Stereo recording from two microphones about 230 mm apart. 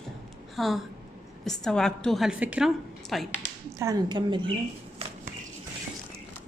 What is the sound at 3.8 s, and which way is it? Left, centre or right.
Speech, centre.